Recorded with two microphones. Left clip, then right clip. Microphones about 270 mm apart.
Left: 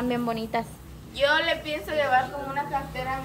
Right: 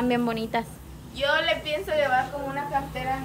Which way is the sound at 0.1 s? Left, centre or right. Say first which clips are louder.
Right 2 dB; centre.